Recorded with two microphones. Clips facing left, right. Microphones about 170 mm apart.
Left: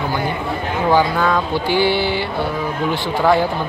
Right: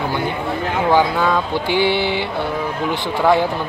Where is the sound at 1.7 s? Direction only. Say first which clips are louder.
Even; 20° right (ahead or behind).